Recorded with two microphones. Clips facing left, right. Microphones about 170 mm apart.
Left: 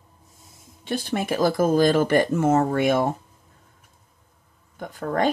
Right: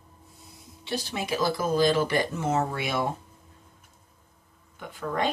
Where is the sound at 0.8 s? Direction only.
50° left (ahead or behind).